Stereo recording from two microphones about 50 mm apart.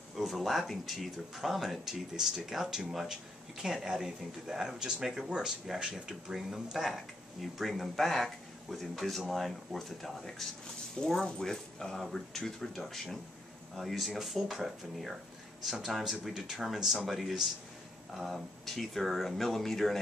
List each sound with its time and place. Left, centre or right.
0.2 s speech: centre
5.8 s speech: centre
6.3 s speech: centre